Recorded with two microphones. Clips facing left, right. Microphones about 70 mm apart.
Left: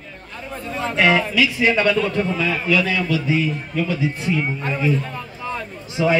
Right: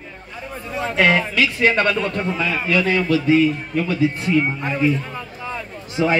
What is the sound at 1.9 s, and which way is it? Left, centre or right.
Speech, centre.